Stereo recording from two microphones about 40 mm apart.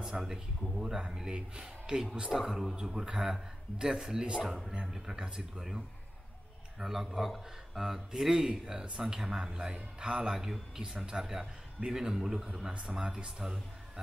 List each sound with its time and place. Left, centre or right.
0.1 s a man's voice: centre
6.8 s a man's voice: centre; by 10.3 s right
10.3 s a man's voice: centre
12.9 s speech: right
13.4 s a man's voice: centre